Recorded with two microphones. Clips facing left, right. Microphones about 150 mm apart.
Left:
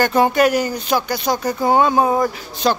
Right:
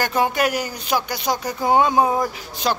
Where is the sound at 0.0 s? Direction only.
10° right (ahead or behind).